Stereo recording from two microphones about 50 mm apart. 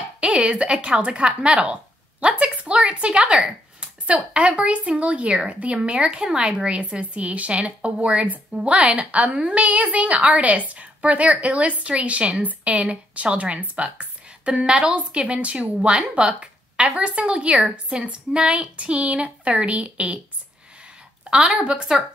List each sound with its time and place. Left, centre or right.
0.2 s a woman's voice: centre
21.3 s speech: centre